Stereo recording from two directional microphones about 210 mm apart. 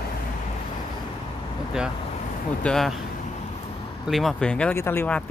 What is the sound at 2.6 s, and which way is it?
Speech, centre (ahead or behind).